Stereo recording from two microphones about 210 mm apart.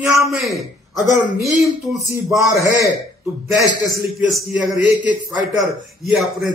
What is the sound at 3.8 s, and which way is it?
A man's voice, centre (ahead or behind).